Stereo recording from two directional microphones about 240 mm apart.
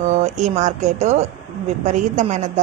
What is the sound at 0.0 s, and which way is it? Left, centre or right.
A woman's voice, right.